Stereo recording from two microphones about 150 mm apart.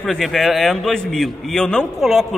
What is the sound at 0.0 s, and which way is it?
A man's voice, centre (ahead or behind).